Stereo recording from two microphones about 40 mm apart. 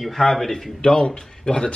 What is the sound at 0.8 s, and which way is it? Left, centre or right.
Speech, left.